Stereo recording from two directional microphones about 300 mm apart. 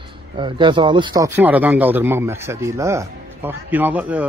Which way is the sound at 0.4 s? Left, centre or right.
Centre.